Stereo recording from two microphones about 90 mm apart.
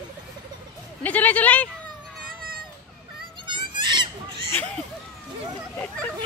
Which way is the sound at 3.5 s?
60° right (ahead or behind).